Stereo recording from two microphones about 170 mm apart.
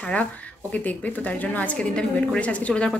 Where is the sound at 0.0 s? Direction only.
5° left (ahead or behind).